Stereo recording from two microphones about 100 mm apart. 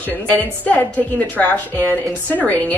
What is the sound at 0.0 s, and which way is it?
A woman's voice, 15° left (ahead or behind).